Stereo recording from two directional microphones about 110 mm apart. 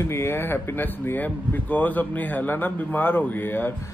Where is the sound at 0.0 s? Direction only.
25° left (ahead or behind).